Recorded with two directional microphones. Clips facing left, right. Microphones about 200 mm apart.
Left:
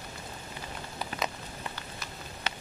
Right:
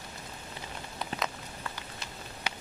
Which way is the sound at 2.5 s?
15° right (ahead or behind).